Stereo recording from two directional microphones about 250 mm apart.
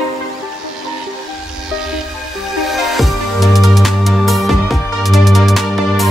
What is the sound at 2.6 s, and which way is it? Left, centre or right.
Music, centre.